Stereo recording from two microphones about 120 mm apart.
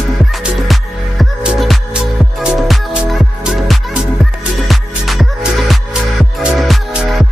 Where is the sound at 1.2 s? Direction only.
5° right (ahead or behind).